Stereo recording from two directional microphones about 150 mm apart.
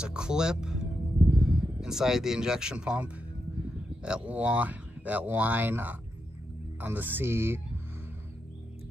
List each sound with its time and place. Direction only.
0.0 s speech: 5° right (ahead or behind)